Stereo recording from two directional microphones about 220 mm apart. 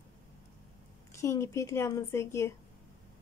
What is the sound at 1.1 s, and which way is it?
A woman's voice, 15° left (ahead or behind).